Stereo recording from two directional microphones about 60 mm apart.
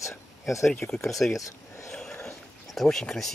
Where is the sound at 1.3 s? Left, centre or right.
Left.